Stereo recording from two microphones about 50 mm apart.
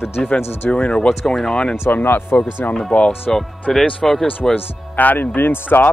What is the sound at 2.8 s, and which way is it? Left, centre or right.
Speech, left.